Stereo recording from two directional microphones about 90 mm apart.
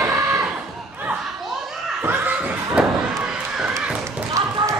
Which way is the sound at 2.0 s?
20° right (ahead or behind).